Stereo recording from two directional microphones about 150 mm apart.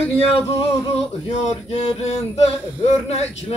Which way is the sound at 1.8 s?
45° left (ahead or behind).